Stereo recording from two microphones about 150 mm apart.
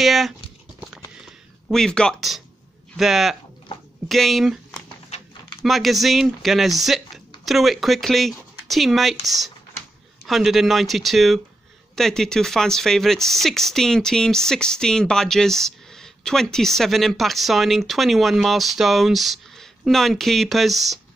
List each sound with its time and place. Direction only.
0.0 s speech: centre (ahead or behind)
1.2 s a sound: 5° left (ahead or behind)
3.0 s speech: centre (ahead or behind)
5.6 s speech: centre (ahead or behind)